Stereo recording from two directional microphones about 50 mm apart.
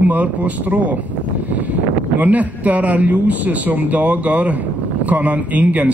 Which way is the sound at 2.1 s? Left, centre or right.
Right.